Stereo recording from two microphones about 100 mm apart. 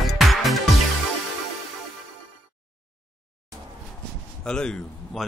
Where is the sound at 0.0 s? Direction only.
Centre (ahead or behind).